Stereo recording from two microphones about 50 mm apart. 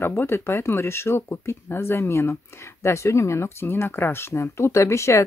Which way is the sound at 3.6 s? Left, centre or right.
Left.